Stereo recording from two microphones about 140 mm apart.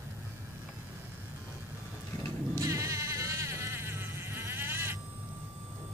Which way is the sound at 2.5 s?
20° right (ahead or behind).